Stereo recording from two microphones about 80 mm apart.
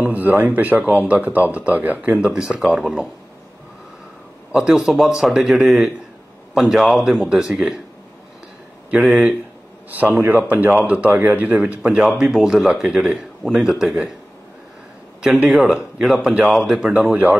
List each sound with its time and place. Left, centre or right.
0.0 s speech: right; by 2.9 s centre
4.5 s a man's voice: centre
8.9 s speech: centre
9.8 s speech: right; by 14.1 s centre
15.2 s speech: centre
15.5 s a man's voice: centre